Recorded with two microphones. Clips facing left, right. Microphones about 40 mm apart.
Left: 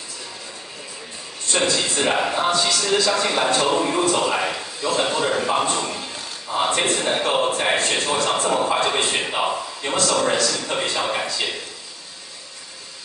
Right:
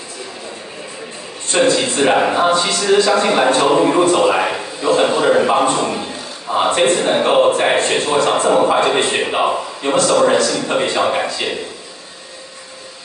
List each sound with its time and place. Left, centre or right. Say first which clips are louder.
1.5 s a man's voice: right 7 dB; right